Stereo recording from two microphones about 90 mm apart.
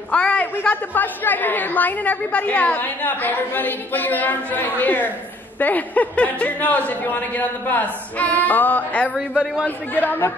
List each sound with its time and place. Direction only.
0.1 s a woman's voice: 15° left (ahead or behind)